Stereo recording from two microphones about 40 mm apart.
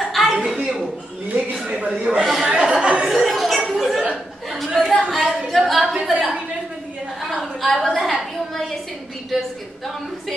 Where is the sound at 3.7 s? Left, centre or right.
Centre.